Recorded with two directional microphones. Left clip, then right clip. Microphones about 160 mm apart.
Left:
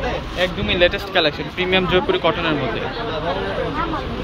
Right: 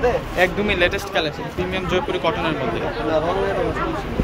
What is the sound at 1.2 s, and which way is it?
Speech, 5° right (ahead or behind).